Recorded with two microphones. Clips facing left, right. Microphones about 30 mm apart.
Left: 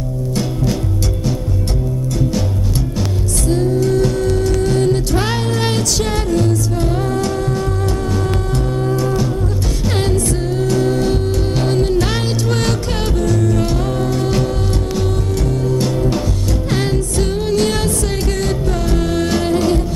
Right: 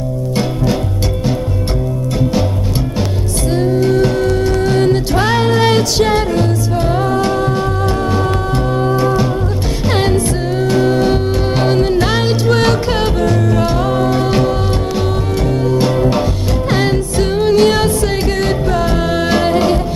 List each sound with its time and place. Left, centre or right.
3.4 s music: right
8.8 s music: right